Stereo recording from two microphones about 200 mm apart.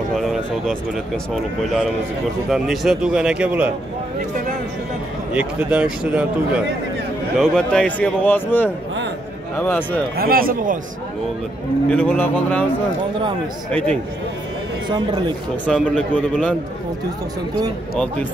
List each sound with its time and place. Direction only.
0.1 s speech: centre (ahead or behind)
5.3 s a man's voice: 5° right (ahead or behind); by 10.0 s 10° left (ahead or behind)
10.1 s speech: 45° right (ahead or behind)
11.9 s a man's voice: 5° left (ahead or behind)
13.7 s speech: 5° left (ahead or behind)
15.6 s speech: 5° left (ahead or behind)